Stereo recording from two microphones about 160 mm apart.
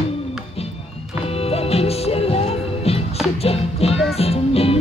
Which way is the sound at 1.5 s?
40° left (ahead or behind).